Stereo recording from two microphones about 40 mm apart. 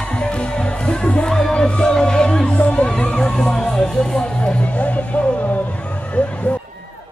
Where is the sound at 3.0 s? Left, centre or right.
Centre.